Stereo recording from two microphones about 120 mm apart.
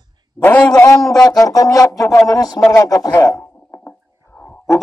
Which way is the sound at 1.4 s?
30° left (ahead or behind).